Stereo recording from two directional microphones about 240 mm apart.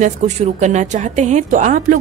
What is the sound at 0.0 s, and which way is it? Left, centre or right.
Speech, right.